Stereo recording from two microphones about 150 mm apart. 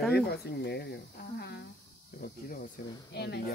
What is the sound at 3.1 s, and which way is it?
Speech, 90° left.